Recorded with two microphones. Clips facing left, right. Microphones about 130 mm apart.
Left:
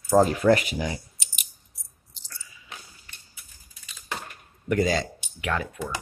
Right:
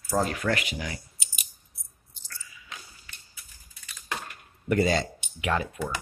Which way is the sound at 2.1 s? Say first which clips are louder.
Left 1 dB; 90° left.